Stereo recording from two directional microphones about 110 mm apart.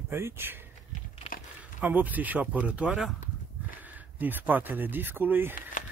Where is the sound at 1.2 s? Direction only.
70° left (ahead or behind).